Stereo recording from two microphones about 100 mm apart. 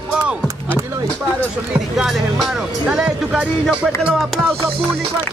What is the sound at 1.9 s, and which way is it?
Music, centre (ahead or behind).